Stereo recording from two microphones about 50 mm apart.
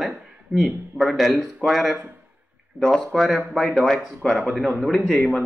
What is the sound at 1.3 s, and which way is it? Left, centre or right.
Speech, centre.